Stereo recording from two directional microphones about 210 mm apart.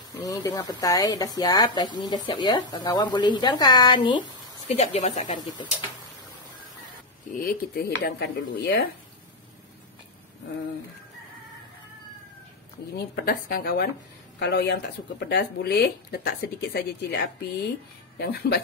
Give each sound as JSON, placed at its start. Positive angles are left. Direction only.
{"t": 0.2, "sound": "speech", "side_deg": 15}
{"t": 4.6, "sound": "speech", "side_deg": 35}
{"t": 5.3, "sound": "speech", "side_deg": 20}
{"t": 7.4, "sound": "speech", "side_deg": 50}
{"t": 12.9, "sound": "speech", "side_deg": 45}